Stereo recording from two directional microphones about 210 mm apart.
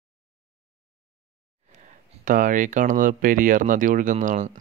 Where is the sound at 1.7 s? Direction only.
40° right (ahead or behind).